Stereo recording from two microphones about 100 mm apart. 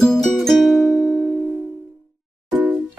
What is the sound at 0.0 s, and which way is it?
Music, 5° left (ahead or behind).